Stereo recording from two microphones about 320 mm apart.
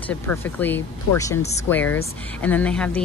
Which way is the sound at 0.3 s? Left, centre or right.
Centre.